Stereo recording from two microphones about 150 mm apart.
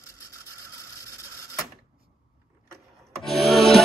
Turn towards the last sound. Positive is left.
turn(degrees=0)  # may be behind; listen again after turning